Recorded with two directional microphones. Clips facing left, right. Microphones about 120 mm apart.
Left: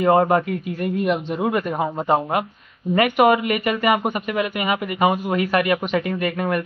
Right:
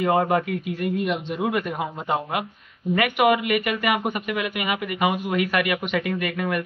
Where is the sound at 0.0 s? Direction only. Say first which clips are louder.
Left 4 dB; 40° left (ahead or behind).